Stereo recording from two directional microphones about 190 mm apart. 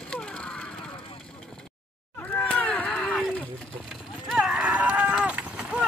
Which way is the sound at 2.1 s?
10° left (ahead or behind).